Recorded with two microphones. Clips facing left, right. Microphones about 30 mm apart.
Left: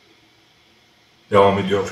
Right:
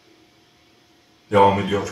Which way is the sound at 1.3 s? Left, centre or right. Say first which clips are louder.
Left 1 dB; centre.